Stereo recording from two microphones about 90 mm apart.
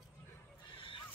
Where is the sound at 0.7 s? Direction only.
75° left (ahead or behind).